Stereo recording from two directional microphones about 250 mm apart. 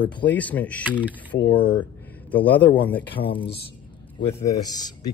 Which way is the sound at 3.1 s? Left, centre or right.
Centre.